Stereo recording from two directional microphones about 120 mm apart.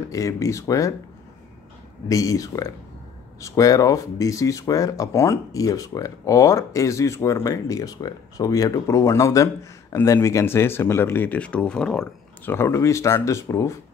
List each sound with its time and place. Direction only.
0.1 s speech: 25° left (ahead or behind)
2.0 s speech: 30° left (ahead or behind); by 12.1 s 5° left (ahead or behind)
12.4 s speech: 20° left (ahead or behind)